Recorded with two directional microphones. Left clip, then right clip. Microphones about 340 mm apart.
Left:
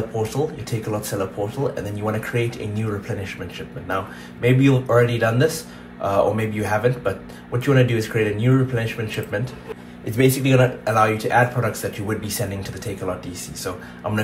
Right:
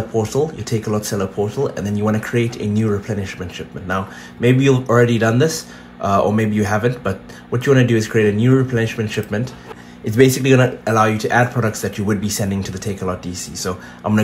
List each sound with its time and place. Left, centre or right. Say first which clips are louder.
0.2 s speech: right 6 dB; right